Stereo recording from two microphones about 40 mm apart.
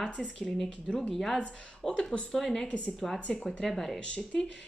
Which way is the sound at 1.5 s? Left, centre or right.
Left.